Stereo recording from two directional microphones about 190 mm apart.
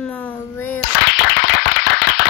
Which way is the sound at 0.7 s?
70° left (ahead or behind).